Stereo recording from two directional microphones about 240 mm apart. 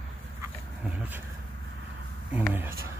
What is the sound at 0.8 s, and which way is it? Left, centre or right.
Speech, centre.